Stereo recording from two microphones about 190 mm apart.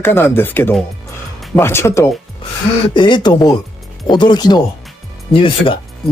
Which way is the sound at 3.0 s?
25° left (ahead or behind).